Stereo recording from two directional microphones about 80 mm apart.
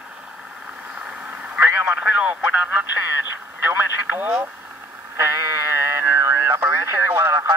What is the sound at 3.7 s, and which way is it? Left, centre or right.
Speech, right.